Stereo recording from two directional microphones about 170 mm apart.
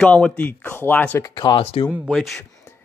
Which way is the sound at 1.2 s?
25° left (ahead or behind).